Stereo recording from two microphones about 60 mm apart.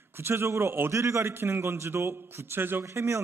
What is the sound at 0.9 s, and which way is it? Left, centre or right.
Speech, right.